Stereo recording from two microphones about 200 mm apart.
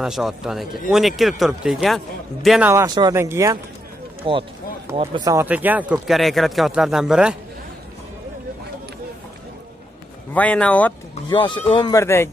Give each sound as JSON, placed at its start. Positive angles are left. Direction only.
{"t": 0.0, "sound": "speech", "side_deg": 0}
{"t": 2.7, "sound": "speech", "side_deg": -20}
{"t": 4.2, "sound": "speech", "side_deg": -25}
{"t": 5.2, "sound": "speech", "side_deg": -15}
{"t": 10.3, "sound": "speech", "side_deg": 5}
{"t": 11.2, "sound": "speech", "side_deg": 25}